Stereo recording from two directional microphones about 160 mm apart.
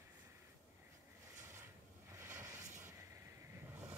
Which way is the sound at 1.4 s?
15° right (ahead or behind).